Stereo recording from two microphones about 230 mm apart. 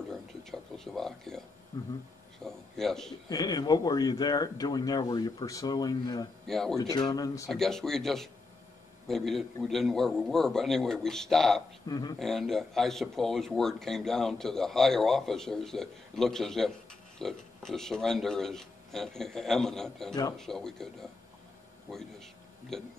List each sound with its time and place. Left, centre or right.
0.1 s a sound: centre
1.7 s speech: centre
2.4 s a man's voice: centre
3.3 s speech: centre
6.4 s speech: centre
6.8 s speech: centre
7.4 s speech: centre
11.9 s speech: centre
12.2 s a man's voice: centre